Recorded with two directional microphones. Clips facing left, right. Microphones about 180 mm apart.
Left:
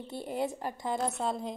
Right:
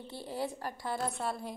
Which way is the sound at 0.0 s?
20° left (ahead or behind).